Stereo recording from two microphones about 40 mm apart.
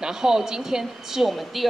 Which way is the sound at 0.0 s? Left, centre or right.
Centre.